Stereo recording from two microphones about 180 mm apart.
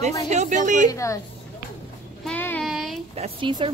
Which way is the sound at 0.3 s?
40° right (ahead or behind).